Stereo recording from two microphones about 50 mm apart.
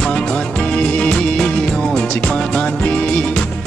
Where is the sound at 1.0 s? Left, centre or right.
Centre.